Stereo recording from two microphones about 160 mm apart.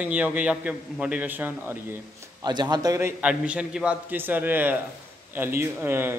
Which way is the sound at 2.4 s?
25° right (ahead or behind).